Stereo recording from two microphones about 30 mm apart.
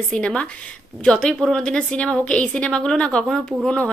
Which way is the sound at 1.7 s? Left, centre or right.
Left.